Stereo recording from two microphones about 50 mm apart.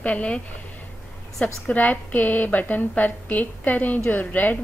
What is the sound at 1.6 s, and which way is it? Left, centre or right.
A woman's voice, left.